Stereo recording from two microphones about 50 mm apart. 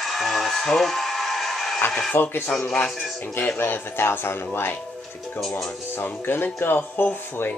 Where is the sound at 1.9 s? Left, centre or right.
Centre.